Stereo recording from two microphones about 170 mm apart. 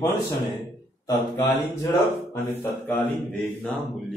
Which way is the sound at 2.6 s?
15° left (ahead or behind).